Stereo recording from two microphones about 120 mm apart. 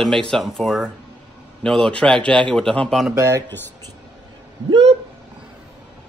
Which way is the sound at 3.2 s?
25° right (ahead or behind).